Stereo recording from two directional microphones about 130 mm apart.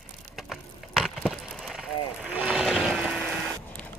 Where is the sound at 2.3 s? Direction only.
10° right (ahead or behind).